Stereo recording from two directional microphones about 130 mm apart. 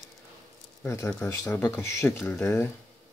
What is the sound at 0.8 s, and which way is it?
Speech, 20° left (ahead or behind).